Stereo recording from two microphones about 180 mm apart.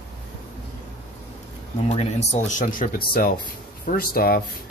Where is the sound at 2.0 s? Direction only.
40° left (ahead or behind).